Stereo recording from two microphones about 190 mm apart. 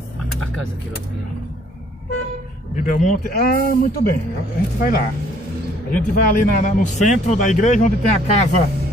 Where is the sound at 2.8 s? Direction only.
40° left (ahead or behind).